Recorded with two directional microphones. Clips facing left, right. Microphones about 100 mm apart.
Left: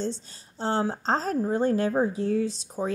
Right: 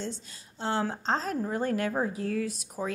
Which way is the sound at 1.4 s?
30° left (ahead or behind).